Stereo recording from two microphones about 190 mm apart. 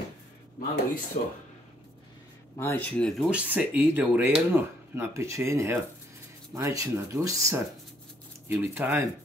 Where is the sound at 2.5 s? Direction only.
10° left (ahead or behind).